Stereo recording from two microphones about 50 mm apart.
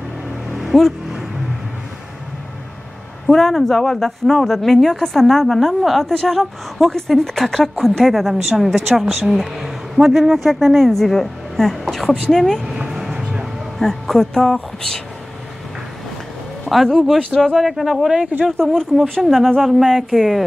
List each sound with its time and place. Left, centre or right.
0.7 s vehicle: centre
3.3 s a woman's voice: centre
12.7 s vehicle: centre
13.7 s a woman's voice: centre
16.6 s a woman's voice: centre
18.6 s a woman's voice: centre